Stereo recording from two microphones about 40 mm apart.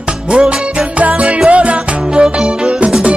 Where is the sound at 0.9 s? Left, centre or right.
Right.